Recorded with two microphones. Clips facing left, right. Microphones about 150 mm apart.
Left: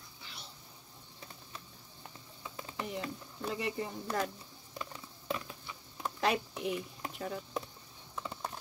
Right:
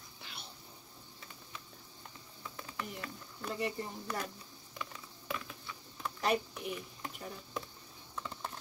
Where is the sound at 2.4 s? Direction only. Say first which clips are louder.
Left 3 dB; 20° left (ahead or behind).